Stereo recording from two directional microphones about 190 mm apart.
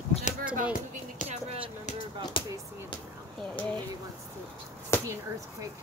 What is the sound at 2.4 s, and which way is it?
Basketball bounce, 25° left (ahead or behind).